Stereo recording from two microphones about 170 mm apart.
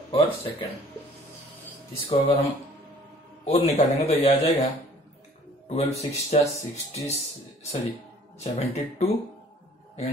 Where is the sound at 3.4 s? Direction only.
40° left (ahead or behind).